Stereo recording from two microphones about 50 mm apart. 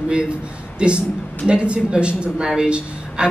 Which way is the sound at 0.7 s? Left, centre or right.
Right.